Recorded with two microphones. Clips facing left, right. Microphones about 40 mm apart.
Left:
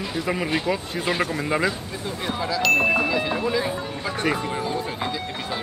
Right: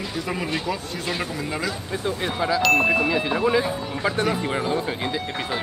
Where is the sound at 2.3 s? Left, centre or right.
Right.